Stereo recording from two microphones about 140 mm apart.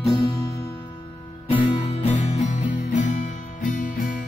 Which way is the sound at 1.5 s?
40° left (ahead or behind).